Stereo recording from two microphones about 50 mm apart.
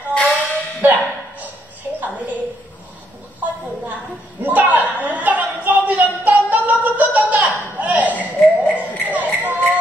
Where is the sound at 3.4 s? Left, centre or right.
Right.